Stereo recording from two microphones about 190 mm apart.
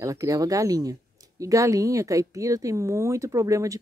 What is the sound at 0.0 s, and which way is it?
Speech, 15° right (ahead or behind).